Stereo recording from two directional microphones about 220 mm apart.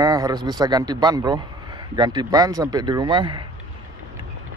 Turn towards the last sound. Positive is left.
turn(degrees=-20)  # may be behind; listen again after turning